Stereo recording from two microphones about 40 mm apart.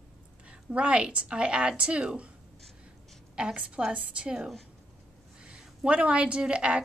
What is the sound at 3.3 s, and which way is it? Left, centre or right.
A woman's voice, right.